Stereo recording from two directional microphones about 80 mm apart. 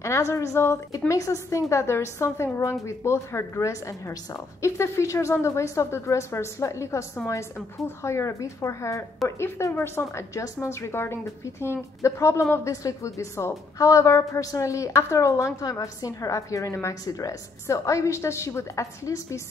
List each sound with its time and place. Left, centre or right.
0.0 s a woman's voice: left
0.9 s a woman's voice: left